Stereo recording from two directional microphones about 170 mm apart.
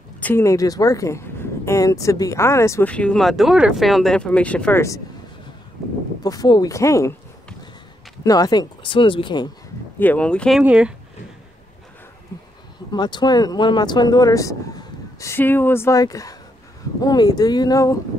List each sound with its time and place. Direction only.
0.2 s speech: 15° left (ahead or behind)
6.2 s speech: 20° left (ahead or behind)
8.2 s speech: 20° left (ahead or behind)
9.9 s speech: 10° left (ahead or behind)
10.6 s speech: 5° right (ahead or behind)
12.9 s speech: 25° left (ahead or behind)